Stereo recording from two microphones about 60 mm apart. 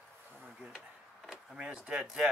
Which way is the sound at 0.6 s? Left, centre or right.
Centre.